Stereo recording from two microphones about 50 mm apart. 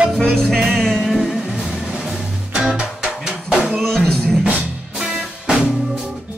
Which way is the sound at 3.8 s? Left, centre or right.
Centre.